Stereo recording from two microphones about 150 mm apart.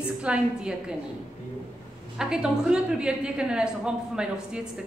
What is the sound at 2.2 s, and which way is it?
A woman's voice, 5° right (ahead or behind).